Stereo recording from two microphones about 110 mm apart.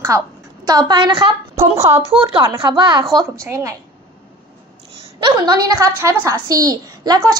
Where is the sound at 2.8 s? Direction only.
45° right (ahead or behind).